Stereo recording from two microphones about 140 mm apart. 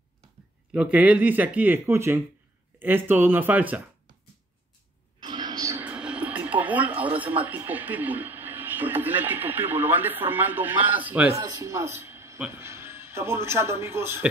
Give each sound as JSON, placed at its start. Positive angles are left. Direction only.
{"t": 0.7, "sound": "speech", "side_deg": -10}
{"t": 5.2, "sound": "a sound", "side_deg": -30}
{"t": 5.9, "sound": "speech", "side_deg": -10}